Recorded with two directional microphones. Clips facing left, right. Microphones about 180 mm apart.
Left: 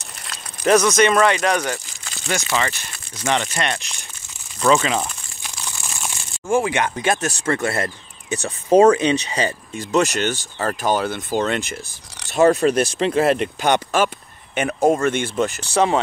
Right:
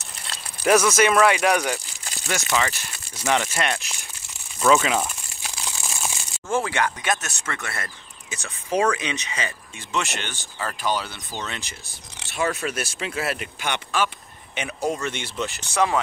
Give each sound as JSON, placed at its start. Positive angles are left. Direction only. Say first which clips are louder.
{"t": 0.7, "sound": "speech", "louder": "left 3 dB", "side_deg": -5}
{"t": 4.6, "sound": "crumpling", "louder": "left 1 dB", "side_deg": -5}
{"t": 6.5, "sound": "speech", "louder": "left 4 dB", "side_deg": 15}
{"t": 12.3, "sound": "speech", "louder": "left 11 dB", "side_deg": 40}
{"t": 15.6, "sound": "speech", "louder": "left 3 dB", "side_deg": 30}